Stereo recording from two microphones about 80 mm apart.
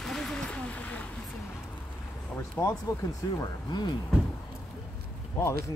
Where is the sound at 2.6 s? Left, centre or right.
Centre.